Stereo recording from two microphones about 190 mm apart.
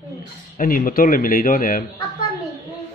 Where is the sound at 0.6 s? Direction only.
50° left (ahead or behind).